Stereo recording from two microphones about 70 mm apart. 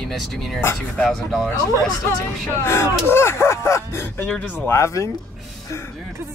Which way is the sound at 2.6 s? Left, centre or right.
Left.